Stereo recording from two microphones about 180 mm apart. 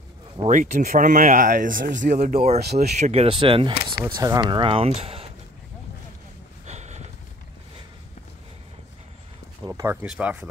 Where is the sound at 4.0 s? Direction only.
15° right (ahead or behind); by 5.3 s 35° right (ahead or behind).